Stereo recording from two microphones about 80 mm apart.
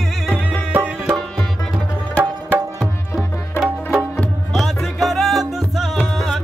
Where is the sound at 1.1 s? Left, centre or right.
Centre.